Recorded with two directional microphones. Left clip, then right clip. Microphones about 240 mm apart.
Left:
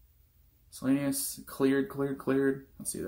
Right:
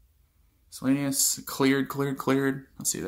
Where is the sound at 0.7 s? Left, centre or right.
Right.